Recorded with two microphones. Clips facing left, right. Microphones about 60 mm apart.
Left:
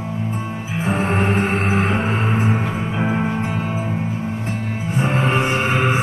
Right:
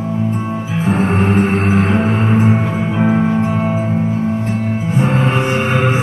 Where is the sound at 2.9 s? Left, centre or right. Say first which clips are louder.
Right 8 dB; centre.